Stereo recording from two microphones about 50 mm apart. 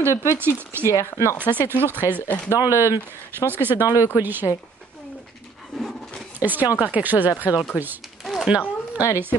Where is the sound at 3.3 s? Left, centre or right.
Right.